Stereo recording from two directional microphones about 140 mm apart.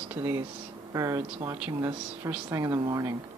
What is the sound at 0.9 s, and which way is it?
Speech, 25° right (ahead or behind).